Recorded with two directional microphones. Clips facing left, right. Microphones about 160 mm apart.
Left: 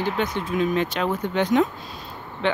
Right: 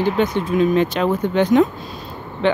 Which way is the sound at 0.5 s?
35° right (ahead or behind).